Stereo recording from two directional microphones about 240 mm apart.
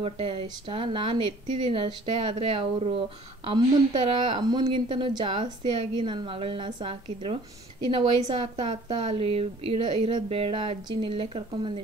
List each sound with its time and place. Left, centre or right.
0.0 s a woman's voice: right